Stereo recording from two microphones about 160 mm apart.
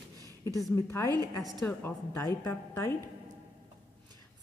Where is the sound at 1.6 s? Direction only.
15° left (ahead or behind).